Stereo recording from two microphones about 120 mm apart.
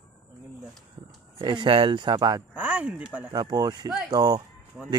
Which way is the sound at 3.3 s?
35° right (ahead or behind).